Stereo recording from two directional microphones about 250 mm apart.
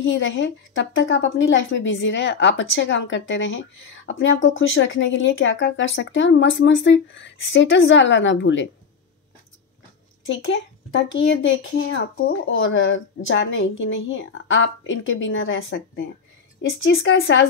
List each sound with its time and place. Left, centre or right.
0.0 s a woman's voice: left
10.2 s a woman's voice: left